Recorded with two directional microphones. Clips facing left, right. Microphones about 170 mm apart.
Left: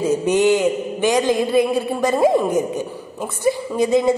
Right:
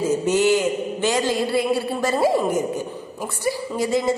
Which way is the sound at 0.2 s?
20° left (ahead or behind).